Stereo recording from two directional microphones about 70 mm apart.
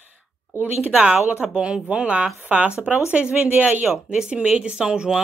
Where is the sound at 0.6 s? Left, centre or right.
Centre.